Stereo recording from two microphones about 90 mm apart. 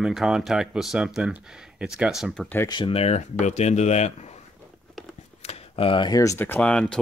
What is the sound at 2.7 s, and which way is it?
Speech, 80° left.